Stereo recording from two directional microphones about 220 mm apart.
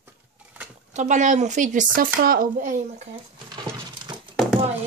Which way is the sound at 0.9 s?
35° right (ahead or behind).